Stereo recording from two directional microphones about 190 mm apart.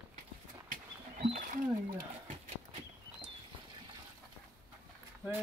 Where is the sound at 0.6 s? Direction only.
45° right (ahead or behind).